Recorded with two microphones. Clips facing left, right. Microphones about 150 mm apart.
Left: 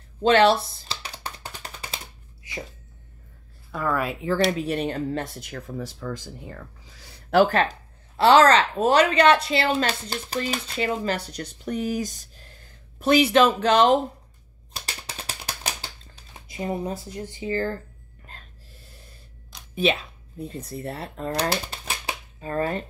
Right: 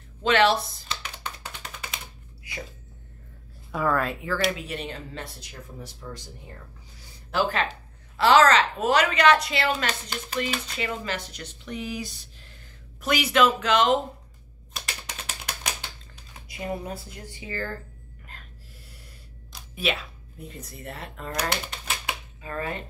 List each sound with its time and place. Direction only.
0.2 s typing: 35° left (ahead or behind)
3.7 s speech: centre (ahead or behind)
4.5 s a woman's voice: 35° left (ahead or behind)
5.8 s speech: 90° left; by 7.4 s 65° left (ahead or behind)
7.4 s a woman's voice: 40° left (ahead or behind)
8.2 s a woman's voice: 30° left (ahead or behind)
13.0 s a woman's voice: 30° left (ahead or behind)
14.7 s typing: 35° left (ahead or behind)
16.4 s speech: 25° left (ahead or behind)
19.7 s speech: 25° left (ahead or behind)